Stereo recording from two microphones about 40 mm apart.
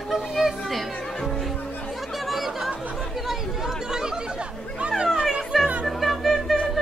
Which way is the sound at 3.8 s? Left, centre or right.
Centre.